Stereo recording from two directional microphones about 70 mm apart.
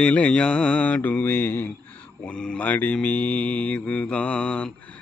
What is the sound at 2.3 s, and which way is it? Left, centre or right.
Mantra, centre.